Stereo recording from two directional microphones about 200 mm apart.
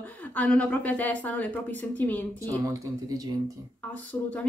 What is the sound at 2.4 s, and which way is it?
Speech, 15° right (ahead or behind).